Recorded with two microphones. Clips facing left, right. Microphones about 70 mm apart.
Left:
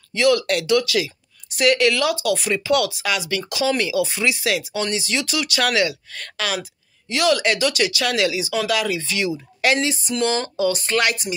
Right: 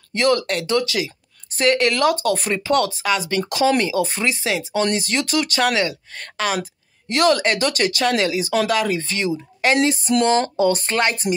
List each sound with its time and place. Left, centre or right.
0.1 s speech: right
0.5 s speech: right
4.8 s speech: right
5.6 s speech: right
7.1 s speech: right
9.3 s a woman's voice: right
9.8 s speech: right